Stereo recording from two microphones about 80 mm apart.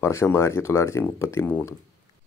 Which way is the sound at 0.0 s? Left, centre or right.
Left.